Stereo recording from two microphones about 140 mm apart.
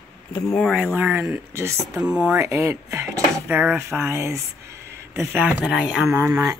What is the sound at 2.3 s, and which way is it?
Speech, 20° right (ahead or behind).